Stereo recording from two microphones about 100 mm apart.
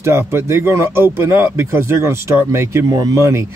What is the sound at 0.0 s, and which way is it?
Speech, 25° right (ahead or behind).